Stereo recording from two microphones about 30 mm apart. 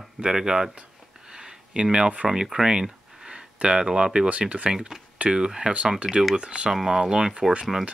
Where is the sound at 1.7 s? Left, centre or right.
Right.